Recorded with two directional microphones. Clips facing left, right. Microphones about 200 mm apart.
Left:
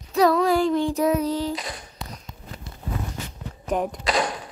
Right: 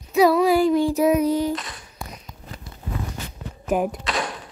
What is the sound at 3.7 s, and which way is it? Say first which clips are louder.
Speech: right 3 dB; 5° right (ahead or behind).